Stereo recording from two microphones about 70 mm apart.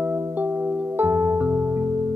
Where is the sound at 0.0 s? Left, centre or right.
Right.